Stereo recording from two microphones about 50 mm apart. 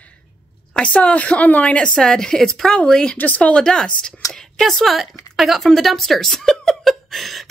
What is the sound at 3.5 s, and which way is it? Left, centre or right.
Speech, centre.